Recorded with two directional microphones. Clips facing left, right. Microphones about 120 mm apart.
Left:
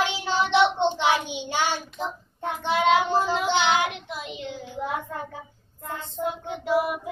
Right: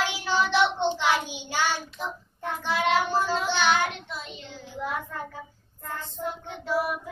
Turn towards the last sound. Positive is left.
turn(degrees=15)  # may be behind; listen again after turning